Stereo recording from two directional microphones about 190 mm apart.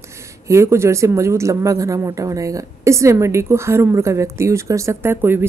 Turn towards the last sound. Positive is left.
turn(degrees=-10)  # may be behind; listen again after turning